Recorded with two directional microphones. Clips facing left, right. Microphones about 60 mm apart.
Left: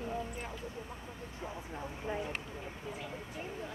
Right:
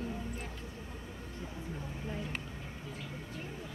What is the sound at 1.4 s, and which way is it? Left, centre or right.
Speech, left.